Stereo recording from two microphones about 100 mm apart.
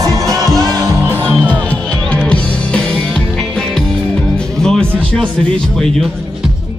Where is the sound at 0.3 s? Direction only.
40° right (ahead or behind).